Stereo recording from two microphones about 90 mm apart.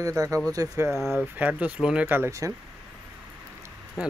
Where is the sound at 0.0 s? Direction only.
40° right (ahead or behind).